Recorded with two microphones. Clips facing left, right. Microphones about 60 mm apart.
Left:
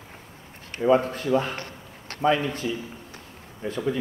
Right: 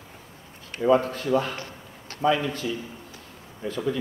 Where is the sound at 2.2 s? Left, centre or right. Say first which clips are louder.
Left 1 dB; left.